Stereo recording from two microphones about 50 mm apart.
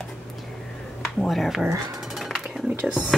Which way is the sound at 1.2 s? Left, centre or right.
Centre.